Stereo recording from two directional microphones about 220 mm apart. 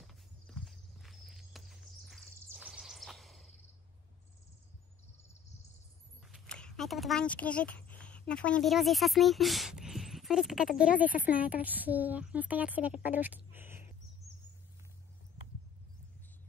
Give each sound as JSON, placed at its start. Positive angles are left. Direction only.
{"t": 0.6, "sound": "walk", "side_deg": 0}
{"t": 6.2, "sound": "a woman's voice", "side_deg": 0}